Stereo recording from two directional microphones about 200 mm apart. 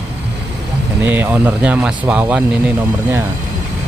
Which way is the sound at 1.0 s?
10° right (ahead or behind).